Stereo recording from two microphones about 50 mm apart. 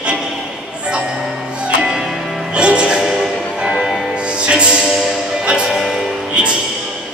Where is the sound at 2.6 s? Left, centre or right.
Right.